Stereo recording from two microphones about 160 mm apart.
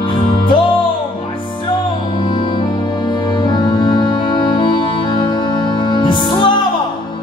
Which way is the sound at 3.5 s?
30° left (ahead or behind).